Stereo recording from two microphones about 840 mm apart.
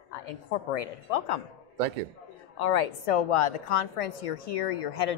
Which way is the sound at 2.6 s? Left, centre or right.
Left.